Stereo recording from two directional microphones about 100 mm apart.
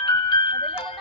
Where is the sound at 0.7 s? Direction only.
65° left (ahead or behind).